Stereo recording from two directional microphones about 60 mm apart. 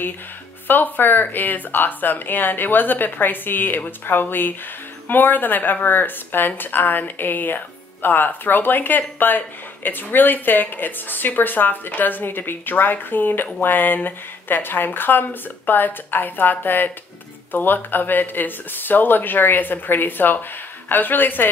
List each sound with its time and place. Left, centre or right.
0.7 s a woman's voice: left